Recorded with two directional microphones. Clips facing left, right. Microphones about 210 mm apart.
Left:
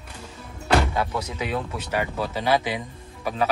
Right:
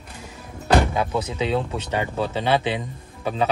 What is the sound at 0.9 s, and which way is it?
A man's voice, 20° right (ahead or behind).